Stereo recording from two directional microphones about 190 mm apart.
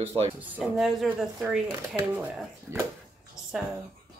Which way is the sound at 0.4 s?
5° right (ahead or behind).